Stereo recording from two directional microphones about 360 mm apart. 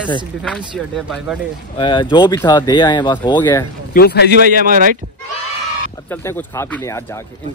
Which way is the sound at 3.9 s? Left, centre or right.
Left.